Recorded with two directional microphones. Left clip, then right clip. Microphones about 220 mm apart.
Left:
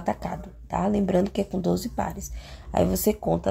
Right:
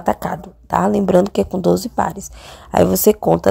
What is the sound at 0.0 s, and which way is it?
Speech, 30° right (ahead or behind).